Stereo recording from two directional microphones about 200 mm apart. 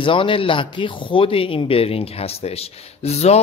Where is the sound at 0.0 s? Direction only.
25° left (ahead or behind).